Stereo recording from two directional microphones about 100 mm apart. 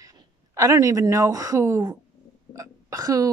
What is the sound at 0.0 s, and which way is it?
Speech, 35° right (ahead or behind).